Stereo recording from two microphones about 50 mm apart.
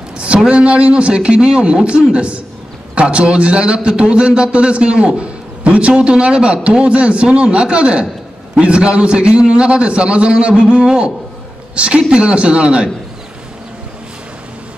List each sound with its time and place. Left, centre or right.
0.5 s a man's voice: right